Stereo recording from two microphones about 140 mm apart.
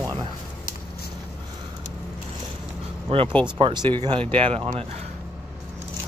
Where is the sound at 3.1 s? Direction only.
45° right (ahead or behind).